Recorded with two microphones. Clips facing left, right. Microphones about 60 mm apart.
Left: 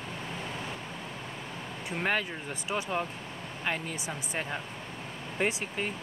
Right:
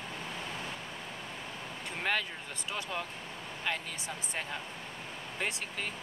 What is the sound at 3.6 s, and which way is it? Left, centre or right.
Speech, left.